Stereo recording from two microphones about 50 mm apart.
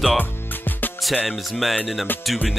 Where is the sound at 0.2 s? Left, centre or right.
Left.